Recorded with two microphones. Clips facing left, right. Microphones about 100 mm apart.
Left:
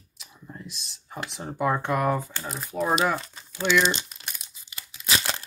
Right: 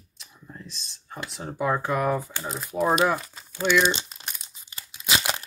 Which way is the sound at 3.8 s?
20° right (ahead or behind).